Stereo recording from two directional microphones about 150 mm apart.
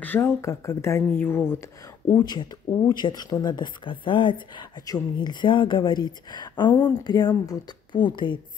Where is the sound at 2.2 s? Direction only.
30° left (ahead or behind).